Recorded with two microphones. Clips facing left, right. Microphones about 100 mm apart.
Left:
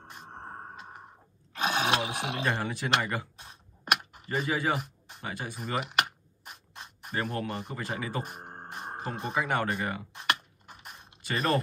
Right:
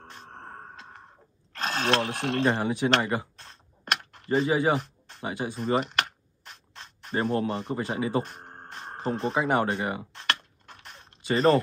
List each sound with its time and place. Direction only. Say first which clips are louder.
0.0 s a sound: even; 10° left (ahead or behind)
1.5 s speech: right 1 dB; 10° left (ahead or behind)
2.4 s speech: right 7 dB; 20° right (ahead or behind)
3.3 s a sound: even; 10° left (ahead or behind)
4.5 s speech: right 4 dB; 20° right (ahead or behind)
4.7 s a sound: right 5 dB; 10° left (ahead or behind)
5.2 s speech: right 6 dB; 20° right (ahead or behind)
5.8 s mechanisms: right 2 dB; 5° left (ahead or behind)
7.2 s speech: right 6 dB; 25° right (ahead or behind)
8.2 s music: right 5 dB; 10° left (ahead or behind)
9.3 s speech: right 3 dB; 25° right (ahead or behind)
10.1 s a sound: even; 10° left (ahead or behind)
11.2 s speech: right 8 dB; 25° right (ahead or behind)